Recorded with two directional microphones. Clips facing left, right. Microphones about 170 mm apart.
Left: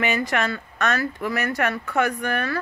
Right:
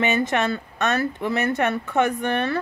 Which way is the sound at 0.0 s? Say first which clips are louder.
Right 2 dB; 20° right (ahead or behind).